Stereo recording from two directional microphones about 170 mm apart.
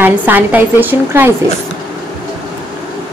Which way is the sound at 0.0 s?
10° right (ahead or behind).